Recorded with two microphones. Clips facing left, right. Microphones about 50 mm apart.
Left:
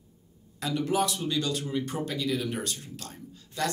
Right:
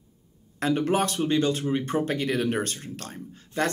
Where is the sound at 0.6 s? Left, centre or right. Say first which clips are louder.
Right 4 dB; right.